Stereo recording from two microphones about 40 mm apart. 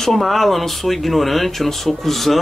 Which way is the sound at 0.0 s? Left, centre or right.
Centre.